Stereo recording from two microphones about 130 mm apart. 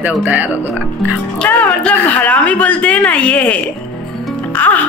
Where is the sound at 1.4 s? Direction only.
10° left (ahead or behind).